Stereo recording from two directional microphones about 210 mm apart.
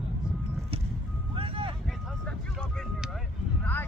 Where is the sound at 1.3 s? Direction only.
25° right (ahead or behind).